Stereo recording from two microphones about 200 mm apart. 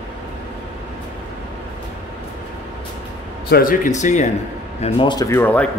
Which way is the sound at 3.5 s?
45° left (ahead or behind).